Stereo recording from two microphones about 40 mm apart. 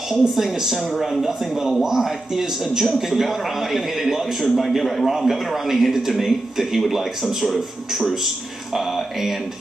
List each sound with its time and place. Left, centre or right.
0.4 s a man's voice: centre
8.7 s a man's voice: centre